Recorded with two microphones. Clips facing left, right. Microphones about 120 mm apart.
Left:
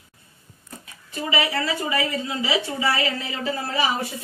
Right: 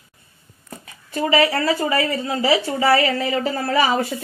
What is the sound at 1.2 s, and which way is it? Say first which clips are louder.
Speech: right 7 dB; 55° right (ahead or behind).